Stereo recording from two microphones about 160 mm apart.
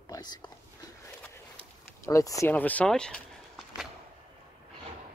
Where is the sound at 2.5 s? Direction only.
10° left (ahead or behind).